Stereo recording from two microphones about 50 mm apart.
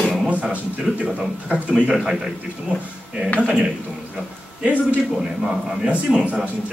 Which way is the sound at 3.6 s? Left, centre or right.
Centre.